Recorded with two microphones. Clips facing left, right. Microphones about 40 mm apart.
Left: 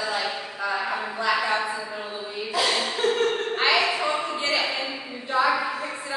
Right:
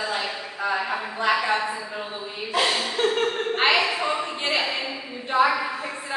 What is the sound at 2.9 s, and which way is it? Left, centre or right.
Chuckle, right.